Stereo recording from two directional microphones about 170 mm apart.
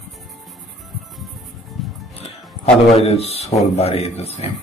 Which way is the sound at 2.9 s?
35° left (ahead or behind).